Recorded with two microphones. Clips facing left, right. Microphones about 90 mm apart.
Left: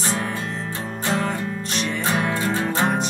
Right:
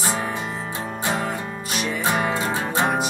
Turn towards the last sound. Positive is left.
turn(degrees=-10)  # may be behind; listen again after turning